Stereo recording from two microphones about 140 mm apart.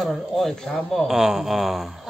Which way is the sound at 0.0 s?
Centre (ahead or behind).